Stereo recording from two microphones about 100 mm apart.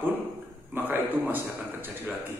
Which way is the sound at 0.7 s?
20° right (ahead or behind).